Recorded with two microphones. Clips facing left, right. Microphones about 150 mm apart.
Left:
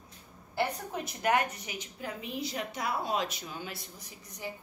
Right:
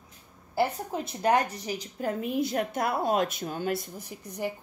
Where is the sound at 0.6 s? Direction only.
30° right (ahead or behind).